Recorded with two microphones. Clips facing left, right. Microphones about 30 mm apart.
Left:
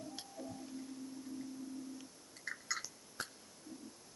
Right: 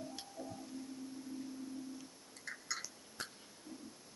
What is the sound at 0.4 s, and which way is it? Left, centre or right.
Music, centre.